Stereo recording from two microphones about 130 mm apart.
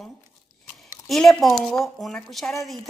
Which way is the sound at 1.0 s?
Centre (ahead or behind).